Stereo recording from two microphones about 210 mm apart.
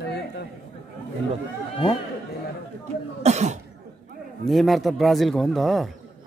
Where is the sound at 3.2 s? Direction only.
35° right (ahead or behind).